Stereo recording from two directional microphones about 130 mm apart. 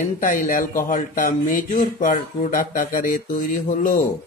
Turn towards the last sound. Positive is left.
turn(degrees=90)